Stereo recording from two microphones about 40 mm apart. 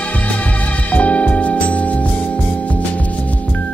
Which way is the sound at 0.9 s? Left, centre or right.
Left.